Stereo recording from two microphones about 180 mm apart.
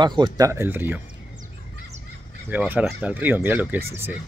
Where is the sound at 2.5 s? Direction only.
5° right (ahead or behind).